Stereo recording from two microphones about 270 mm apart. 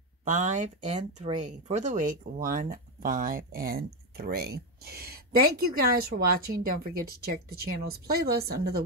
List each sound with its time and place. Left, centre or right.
0.2 s speech: right